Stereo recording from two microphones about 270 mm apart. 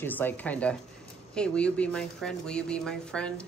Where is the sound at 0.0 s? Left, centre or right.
Centre.